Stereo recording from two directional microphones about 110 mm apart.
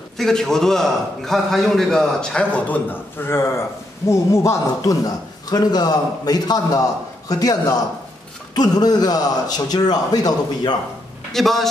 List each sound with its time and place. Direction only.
0.2 s a man's voice: 5° left (ahead or behind); by 10.8 s 40° left (ahead or behind)
11.3 s a man's voice: 5° left (ahead or behind)